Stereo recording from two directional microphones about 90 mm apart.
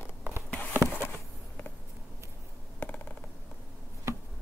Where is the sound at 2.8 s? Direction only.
15° left (ahead or behind).